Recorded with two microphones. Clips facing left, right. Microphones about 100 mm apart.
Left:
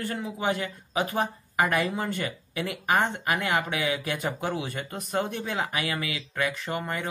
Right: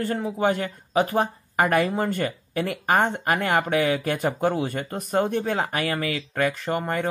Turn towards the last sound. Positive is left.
turn(degrees=-40)  # may be behind; listen again after turning